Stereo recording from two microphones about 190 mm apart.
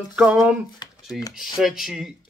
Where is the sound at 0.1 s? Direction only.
5° right (ahead or behind).